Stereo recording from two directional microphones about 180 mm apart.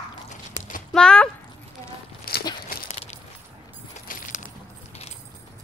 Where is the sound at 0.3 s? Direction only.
45° left (ahead or behind).